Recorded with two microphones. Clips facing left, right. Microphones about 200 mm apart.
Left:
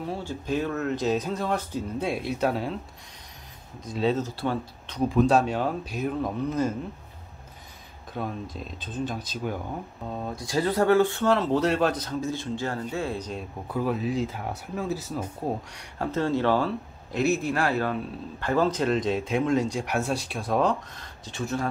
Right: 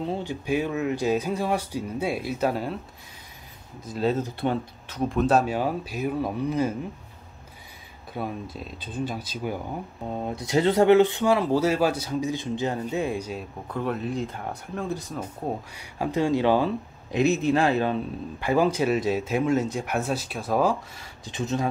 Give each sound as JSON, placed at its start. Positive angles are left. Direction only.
{"t": 0.0, "sound": "speech", "side_deg": -20}
{"t": 3.8, "sound": "speech", "side_deg": -5}
{"t": 4.2, "sound": "speech", "side_deg": -20}
{"t": 4.8, "sound": "speech", "side_deg": 0}
{"t": 8.1, "sound": "speech", "side_deg": -5}
{"t": 13.7, "sound": "speech", "side_deg": 5}